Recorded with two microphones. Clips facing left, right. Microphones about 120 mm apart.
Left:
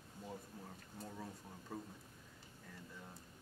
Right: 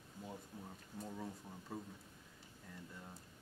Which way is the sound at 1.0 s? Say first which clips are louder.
Right 3 dB; centre (ahead or behind).